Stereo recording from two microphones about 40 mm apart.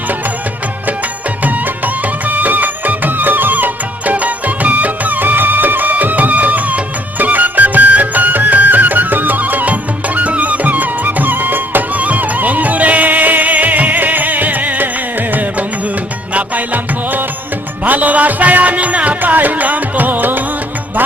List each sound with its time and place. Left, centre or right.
2.2 s music: right
12.0 s music: right
16.3 s music: right
19.3 s music: right